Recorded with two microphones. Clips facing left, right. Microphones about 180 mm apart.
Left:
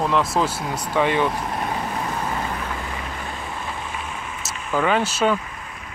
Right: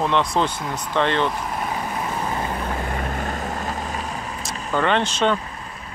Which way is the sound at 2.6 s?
50° right (ahead or behind).